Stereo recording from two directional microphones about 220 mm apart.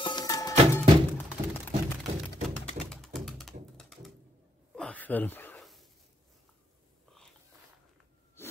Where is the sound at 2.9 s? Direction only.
Centre (ahead or behind).